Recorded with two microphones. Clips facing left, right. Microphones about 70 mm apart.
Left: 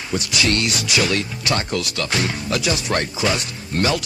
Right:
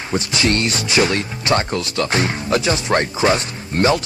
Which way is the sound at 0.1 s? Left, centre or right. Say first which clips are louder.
Right 2 dB; right.